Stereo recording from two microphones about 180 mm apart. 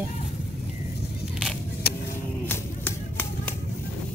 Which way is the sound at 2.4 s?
10° left (ahead or behind).